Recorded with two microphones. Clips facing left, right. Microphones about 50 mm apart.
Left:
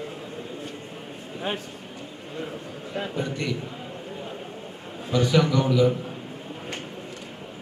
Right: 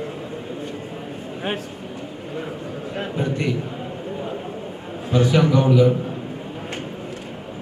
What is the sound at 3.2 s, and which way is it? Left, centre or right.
Speech, centre.